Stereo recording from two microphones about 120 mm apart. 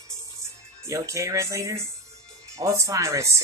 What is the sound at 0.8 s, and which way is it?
Speech, 25° right (ahead or behind).